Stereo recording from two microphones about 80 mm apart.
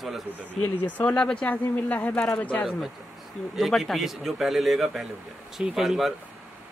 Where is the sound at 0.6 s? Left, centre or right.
Centre.